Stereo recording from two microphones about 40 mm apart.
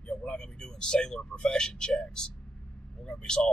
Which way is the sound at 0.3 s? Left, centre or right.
Left.